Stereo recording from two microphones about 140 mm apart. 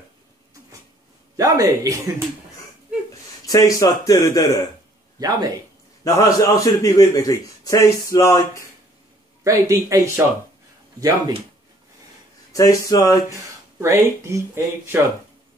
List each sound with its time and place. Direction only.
1.3 s speech: 25° right (ahead or behind)
3.4 s a man's voice: 25° left (ahead or behind)
6.0 s a man's voice: 25° left (ahead or behind)
9.4 s speech: 20° right (ahead or behind)
12.5 s a man's voice: 25° left (ahead or behind)
13.7 s speech: 20° right (ahead or behind)